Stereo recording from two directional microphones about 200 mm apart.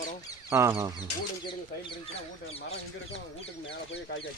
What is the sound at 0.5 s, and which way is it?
Speech, 15° right (ahead or behind).